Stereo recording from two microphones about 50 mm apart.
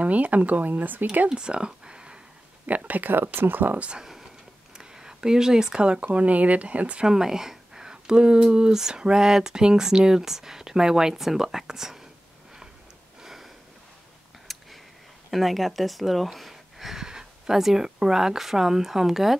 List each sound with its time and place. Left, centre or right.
0.0 s speech: right
1.3 s speech: centre
2.6 s speech: right
4.0 s a sound: centre
4.7 s speech: centre
7.1 s speech: centre
13.2 s sniff: centre
14.5 s a sound: centre
15.3 s speech: centre